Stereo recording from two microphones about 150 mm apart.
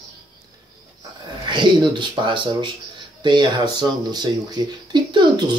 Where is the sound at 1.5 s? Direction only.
30° right (ahead or behind).